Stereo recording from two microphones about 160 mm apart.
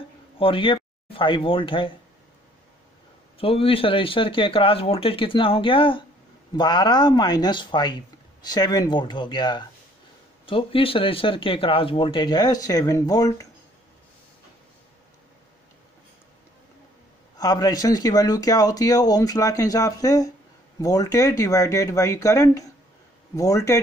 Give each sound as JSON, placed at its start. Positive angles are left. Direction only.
{"t": 0.4, "sound": "speech", "side_deg": 35}
{"t": 3.3, "sound": "speech", "side_deg": 35}
{"t": 17.4, "sound": "speech", "side_deg": 25}